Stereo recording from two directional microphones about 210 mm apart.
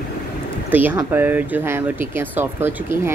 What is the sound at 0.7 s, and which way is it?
Speech, 10° right (ahead or behind).